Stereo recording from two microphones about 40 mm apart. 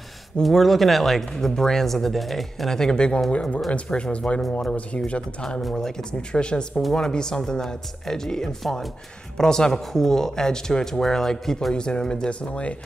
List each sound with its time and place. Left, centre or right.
0.4 s speech: centre
2.7 s speech: centre
5.6 s speech: centre
6.4 s speech: left
11.7 s speech: left
12.3 s speech: left